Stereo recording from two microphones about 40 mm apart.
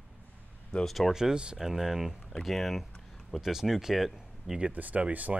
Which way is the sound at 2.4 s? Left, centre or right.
Centre.